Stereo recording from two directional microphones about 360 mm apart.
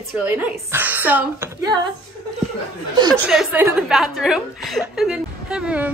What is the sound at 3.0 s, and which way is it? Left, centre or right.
A woman's voice, centre.